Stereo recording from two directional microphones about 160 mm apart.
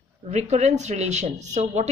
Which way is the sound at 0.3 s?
45° right (ahead or behind).